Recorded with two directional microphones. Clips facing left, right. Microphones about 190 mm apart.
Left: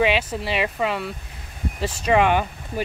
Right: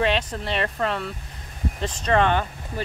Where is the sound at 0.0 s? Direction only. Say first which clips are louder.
Left 2 dB; 5° left (ahead or behind).